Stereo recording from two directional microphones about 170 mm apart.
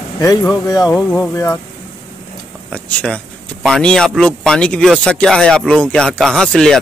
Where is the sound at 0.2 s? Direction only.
20° left (ahead or behind).